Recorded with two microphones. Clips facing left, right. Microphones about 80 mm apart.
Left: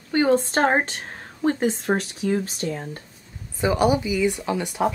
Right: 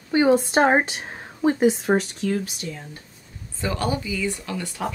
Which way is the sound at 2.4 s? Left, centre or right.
Left.